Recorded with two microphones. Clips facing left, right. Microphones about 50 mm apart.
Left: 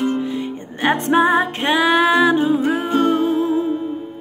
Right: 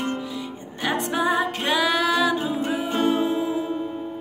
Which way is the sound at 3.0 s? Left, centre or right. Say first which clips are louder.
Left 3 dB; left.